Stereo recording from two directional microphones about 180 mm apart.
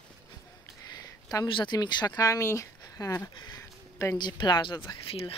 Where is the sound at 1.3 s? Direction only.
25° left (ahead or behind).